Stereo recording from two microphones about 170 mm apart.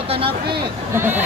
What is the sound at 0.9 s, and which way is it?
Speech, 10° right (ahead or behind).